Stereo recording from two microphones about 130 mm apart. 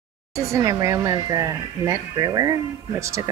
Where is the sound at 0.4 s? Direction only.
25° right (ahead or behind).